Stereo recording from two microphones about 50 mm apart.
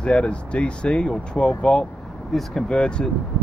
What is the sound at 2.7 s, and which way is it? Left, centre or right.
Speech, centre.